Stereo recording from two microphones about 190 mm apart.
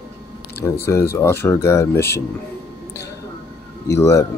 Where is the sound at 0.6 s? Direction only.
15° left (ahead or behind).